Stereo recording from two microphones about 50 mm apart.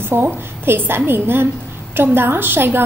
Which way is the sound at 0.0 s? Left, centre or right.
Right.